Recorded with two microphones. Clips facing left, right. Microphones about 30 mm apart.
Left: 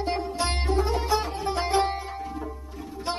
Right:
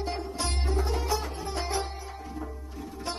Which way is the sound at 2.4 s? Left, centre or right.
Centre.